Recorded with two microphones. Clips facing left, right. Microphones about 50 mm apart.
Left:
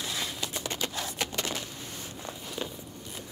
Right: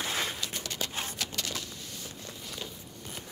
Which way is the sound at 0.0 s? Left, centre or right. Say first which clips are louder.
Right 2 dB; right.